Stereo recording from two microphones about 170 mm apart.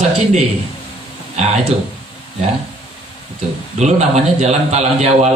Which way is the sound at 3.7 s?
40° right (ahead or behind).